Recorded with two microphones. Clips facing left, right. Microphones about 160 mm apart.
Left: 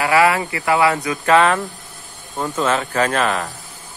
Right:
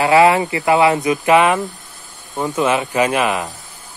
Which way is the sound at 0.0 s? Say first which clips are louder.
Right 4 dB; 25° right (ahead or behind).